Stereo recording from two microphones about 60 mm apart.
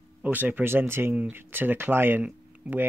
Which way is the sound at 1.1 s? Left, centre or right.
Right.